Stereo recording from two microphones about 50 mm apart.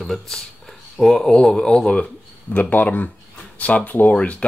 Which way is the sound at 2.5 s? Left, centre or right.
Left.